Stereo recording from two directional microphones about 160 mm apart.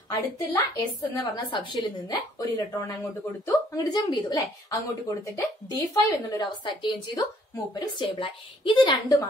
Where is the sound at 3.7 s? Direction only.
25° left (ahead or behind).